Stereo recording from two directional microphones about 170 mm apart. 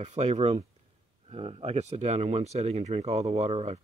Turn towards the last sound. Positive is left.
turn(degrees=-40)  # may be behind; listen again after turning